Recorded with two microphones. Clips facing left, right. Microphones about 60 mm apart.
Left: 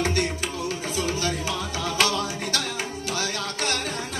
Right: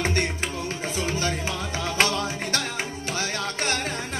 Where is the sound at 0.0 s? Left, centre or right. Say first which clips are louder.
Left 1 dB; right.